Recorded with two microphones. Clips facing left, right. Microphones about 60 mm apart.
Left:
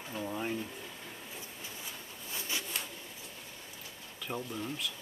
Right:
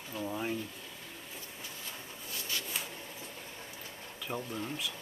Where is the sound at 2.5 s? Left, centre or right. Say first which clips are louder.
Left 1 dB; centre.